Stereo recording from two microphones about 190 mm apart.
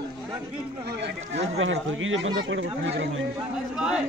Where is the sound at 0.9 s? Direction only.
65° right (ahead or behind).